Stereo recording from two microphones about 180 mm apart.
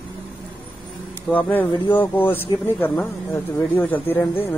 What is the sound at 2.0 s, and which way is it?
Speech, 10° left (ahead or behind).